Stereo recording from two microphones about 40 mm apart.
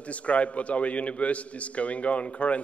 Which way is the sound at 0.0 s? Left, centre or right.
Left.